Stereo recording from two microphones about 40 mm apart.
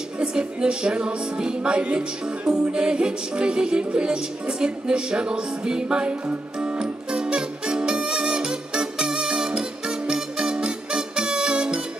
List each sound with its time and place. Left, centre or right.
0.2 s music: right